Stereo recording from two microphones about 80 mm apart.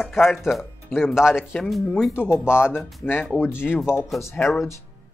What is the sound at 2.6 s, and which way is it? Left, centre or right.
Speech, centre.